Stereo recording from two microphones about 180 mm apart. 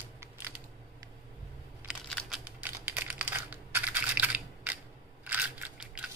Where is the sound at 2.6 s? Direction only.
10° right (ahead or behind).